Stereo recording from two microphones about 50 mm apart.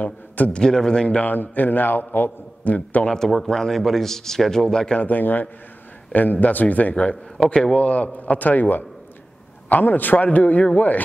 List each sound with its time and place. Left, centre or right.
0.0 s a man's voice: left
0.6 s a man's voice: centre
1.0 s a man's voice: left
1.3 s a man's voice: left
2.6 s a man's voice: left
3.1 s a man's voice: centre
4.9 s a man's voice: left
7.4 s a man's voice: centre